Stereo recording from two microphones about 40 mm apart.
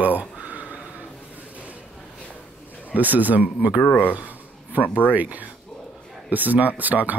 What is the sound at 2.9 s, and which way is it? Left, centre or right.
Speech, right.